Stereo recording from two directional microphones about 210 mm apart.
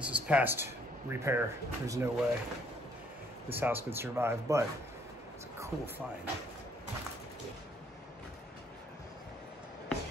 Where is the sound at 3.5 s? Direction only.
10° right (ahead or behind).